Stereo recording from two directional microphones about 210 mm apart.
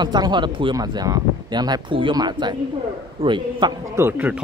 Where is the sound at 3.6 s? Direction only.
20° right (ahead or behind).